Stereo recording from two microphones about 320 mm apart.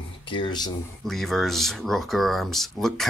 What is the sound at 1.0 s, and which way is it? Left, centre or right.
Speech, centre.